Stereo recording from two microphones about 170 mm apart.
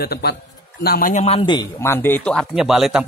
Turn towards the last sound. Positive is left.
turn(degrees=0)  # may be behind; listen again after turning